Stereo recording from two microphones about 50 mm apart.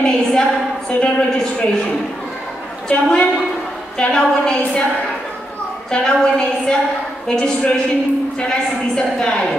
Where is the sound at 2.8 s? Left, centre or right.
Left.